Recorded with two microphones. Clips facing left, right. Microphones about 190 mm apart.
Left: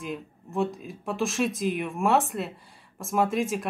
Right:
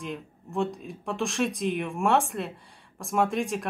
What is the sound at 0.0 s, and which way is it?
Speech, centre (ahead or behind).